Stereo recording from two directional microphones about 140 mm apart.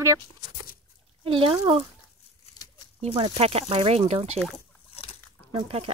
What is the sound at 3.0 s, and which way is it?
Speech, 45° right (ahead or behind).